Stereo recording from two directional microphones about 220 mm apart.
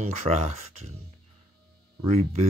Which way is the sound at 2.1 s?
30° right (ahead or behind).